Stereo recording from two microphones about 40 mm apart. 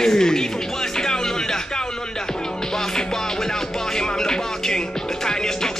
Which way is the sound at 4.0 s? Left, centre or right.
Centre.